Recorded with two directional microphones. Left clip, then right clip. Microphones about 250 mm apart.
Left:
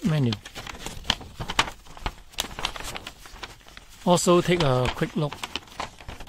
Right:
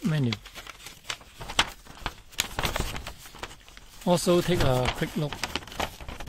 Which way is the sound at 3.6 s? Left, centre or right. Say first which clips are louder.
Left 3 dB; left.